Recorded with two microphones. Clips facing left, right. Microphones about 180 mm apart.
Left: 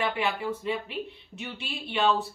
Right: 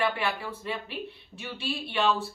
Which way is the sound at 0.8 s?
20° left (ahead or behind).